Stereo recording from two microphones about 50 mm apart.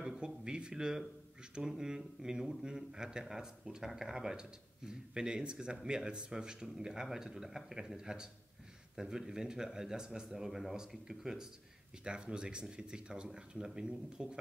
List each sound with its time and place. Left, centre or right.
0.0 s a man's voice: centre